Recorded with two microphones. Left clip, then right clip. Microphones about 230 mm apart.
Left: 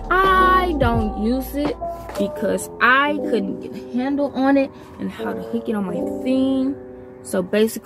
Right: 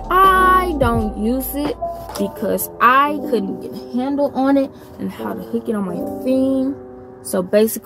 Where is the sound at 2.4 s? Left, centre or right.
Centre.